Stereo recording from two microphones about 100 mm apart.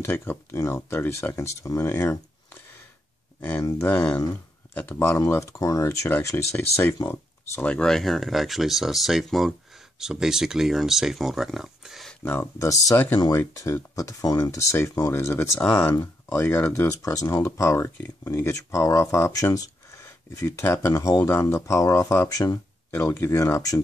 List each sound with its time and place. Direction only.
0.0 s speech: 25° left (ahead or behind)
5.3 s speech: 30° left (ahead or behind)
7.6 s speech: 10° left (ahead or behind)
12.5 s speech: 30° left (ahead or behind)
22.8 s speech: 20° left (ahead or behind)